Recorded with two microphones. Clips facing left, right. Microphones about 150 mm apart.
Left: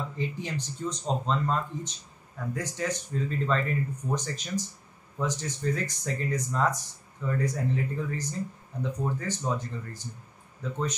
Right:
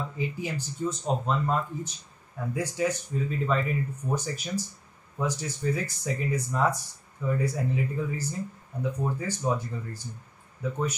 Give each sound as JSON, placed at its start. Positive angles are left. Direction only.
{"t": 0.2, "sound": "speech", "side_deg": -10}